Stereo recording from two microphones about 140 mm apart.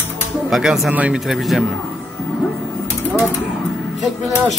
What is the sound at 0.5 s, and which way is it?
Speech, centre (ahead or behind).